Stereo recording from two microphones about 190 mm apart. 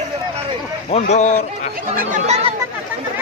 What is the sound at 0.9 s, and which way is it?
Speech, 40° left (ahead or behind).